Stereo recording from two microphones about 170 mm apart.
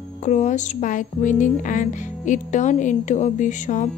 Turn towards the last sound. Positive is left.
turn(degrees=45)  # may be behind; listen again after turning